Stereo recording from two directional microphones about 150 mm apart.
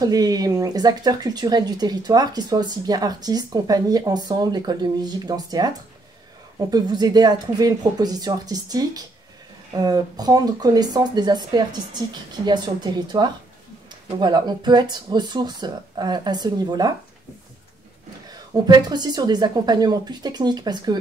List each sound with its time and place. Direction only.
0.0 s speech: 25° right (ahead or behind)
18.7 s speech: 25° right (ahead or behind)